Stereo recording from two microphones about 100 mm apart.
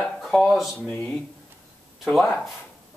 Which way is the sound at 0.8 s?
15° left (ahead or behind).